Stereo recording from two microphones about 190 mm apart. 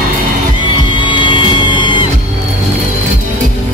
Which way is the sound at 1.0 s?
25° left (ahead or behind).